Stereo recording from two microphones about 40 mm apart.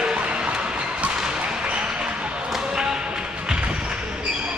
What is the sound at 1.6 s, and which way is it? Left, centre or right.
Basketball bounce, right.